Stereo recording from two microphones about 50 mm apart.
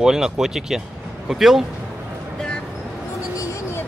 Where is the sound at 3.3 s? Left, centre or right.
Left.